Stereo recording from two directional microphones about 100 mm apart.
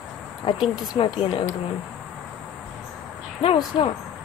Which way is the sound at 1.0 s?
65° left (ahead or behind).